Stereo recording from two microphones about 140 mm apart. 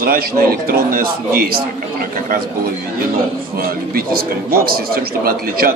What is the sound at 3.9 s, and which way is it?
A man's voice, 90° right.